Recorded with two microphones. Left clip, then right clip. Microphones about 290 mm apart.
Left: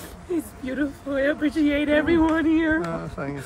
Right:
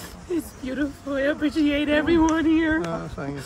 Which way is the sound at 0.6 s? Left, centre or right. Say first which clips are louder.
Left 1 dB; centre.